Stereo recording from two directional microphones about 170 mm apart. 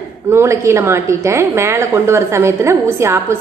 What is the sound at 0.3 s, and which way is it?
A woman's voice, 15° right (ahead or behind).